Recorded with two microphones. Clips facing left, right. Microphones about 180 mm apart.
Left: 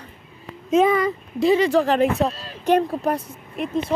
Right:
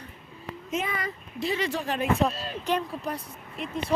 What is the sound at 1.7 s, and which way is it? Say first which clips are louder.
Speech: left 12 dB; 90° left.